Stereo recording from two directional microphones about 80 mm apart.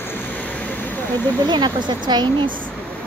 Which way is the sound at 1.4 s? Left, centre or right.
Right.